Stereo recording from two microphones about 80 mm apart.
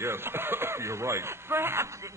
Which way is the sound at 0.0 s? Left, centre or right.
Right.